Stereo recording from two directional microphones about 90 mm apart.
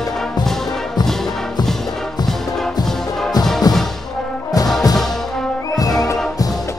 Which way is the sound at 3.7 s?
45° left (ahead or behind).